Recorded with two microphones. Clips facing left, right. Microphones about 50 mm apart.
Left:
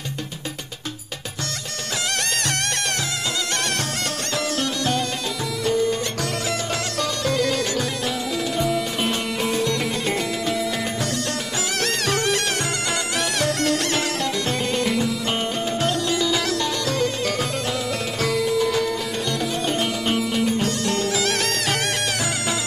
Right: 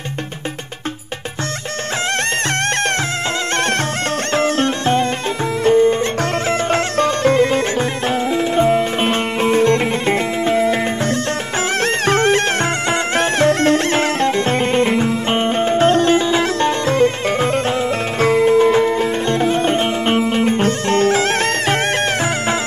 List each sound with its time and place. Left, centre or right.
4.3 s music: right